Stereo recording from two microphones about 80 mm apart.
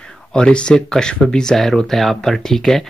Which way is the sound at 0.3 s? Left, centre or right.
Centre.